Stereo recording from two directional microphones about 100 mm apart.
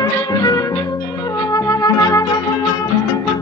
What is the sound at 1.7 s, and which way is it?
Music, 35° left (ahead or behind).